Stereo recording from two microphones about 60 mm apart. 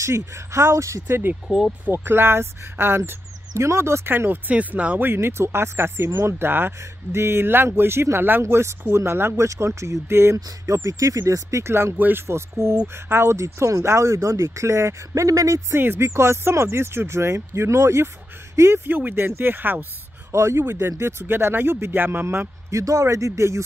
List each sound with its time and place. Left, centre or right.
0.0 s speech: right
5.0 s speech: right
6.8 s speech: right
9.5 s speech: right
10.3 s speech: right
15.7 s speech: right
18.9 s speech: right
20.2 s speech: right
22.7 s speech: right